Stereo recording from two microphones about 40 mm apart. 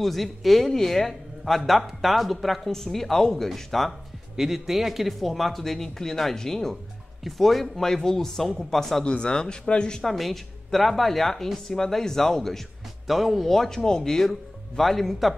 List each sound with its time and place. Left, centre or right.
0.0 s speech: centre
4.4 s speech: centre
7.2 s speech: centre
9.0 s speech: left
10.0 s speech: centre
13.0 s speech: centre
13.5 s speech: centre